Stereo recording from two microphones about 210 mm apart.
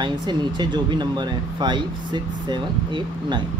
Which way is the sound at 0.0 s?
20° right (ahead or behind).